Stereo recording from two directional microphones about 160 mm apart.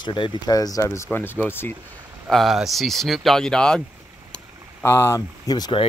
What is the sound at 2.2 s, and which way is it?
Speech, centre (ahead or behind).